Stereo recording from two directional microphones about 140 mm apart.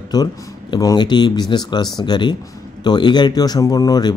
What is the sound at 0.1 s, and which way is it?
A man's voice, 30° left (ahead or behind).